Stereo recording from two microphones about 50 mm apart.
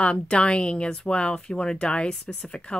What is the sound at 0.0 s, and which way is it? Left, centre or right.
Speech, left.